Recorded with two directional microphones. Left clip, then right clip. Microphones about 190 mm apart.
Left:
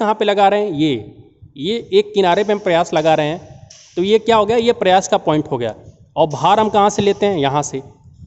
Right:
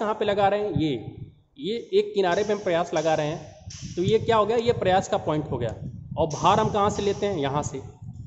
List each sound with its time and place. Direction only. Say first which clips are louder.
0.0 s a man's voice: left 9 dB; 60° left (ahead or behind)